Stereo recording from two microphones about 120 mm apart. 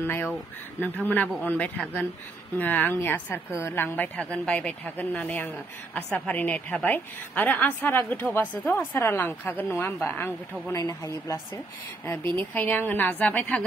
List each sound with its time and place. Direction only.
0.0 s a woman's voice: 20° left (ahead or behind)